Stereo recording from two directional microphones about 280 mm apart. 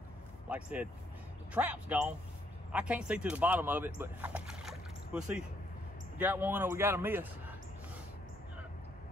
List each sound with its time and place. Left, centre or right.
0.5 s a man's voice: centre